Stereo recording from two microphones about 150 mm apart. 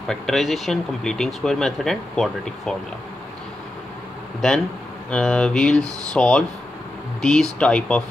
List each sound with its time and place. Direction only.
0.1 s speech: centre (ahead or behind)
4.4 s speech: centre (ahead or behind)